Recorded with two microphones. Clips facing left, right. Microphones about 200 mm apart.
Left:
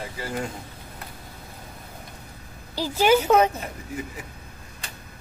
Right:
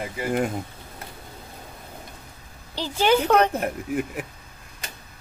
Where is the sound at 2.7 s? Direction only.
10° left (ahead or behind).